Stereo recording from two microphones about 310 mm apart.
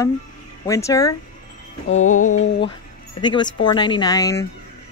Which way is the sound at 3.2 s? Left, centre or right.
Centre.